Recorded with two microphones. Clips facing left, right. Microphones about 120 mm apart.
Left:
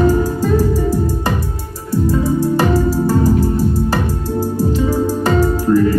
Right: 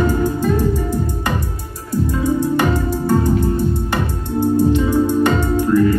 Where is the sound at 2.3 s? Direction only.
35° left (ahead or behind).